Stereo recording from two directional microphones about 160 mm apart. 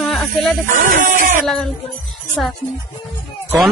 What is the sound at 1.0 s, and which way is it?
Speech, 55° right (ahead or behind).